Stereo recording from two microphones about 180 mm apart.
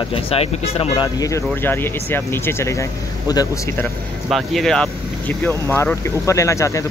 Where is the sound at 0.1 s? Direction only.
35° left (ahead or behind).